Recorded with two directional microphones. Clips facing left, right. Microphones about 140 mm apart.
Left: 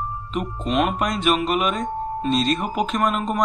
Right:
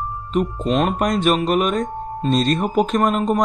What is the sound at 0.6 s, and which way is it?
Speech, 40° right (ahead or behind).